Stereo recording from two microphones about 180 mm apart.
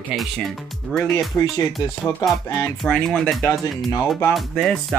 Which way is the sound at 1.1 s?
20° left (ahead or behind).